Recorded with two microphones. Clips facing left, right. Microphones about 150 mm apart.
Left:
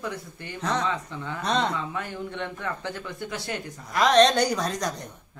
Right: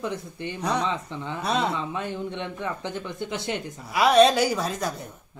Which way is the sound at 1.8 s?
20° right (ahead or behind).